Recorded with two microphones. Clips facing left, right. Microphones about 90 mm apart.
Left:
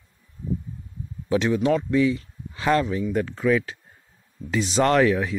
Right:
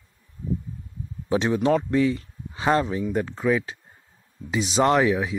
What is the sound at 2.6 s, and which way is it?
Speech, 25° right (ahead or behind).